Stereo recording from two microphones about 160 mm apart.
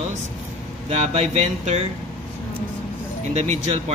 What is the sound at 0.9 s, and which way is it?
Speech, 40° right (ahead or behind).